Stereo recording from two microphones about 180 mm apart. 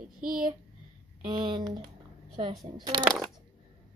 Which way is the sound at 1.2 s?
25° right (ahead or behind).